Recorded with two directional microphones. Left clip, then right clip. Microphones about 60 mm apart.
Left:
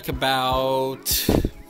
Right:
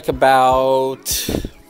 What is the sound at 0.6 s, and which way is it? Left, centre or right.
Music, right.